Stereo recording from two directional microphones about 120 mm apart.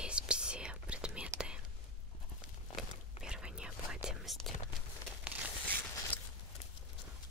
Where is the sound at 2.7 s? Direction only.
5° right (ahead or behind).